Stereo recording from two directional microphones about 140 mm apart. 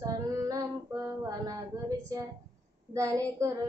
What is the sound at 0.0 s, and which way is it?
Female singing, 25° right (ahead or behind).